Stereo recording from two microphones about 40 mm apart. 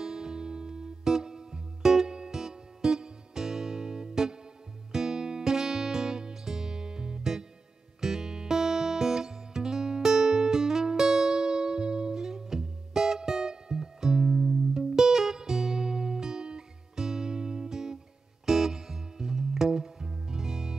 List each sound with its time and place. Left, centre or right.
0.0 s music: centre